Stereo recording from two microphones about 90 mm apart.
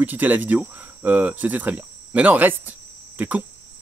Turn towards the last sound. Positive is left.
turn(degrees=-20)  # may be behind; listen again after turning